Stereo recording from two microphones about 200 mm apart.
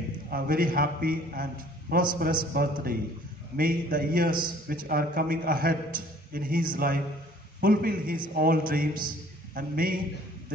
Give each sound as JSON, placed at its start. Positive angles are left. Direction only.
{"t": 0.3, "sound": "a man's voice", "side_deg": -45}